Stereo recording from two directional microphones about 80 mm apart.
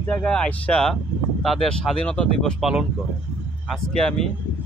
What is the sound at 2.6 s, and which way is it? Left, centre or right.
Speech, centre.